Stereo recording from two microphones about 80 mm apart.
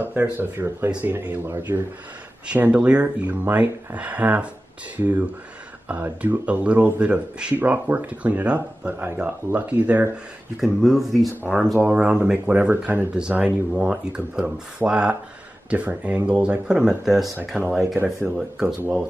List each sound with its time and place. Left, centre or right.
0.0 s speech: right
2.4 s speech: centre
10.6 s speech: centre
18.8 s speech: right